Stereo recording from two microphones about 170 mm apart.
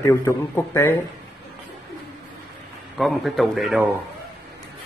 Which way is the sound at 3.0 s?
Centre (ahead or behind).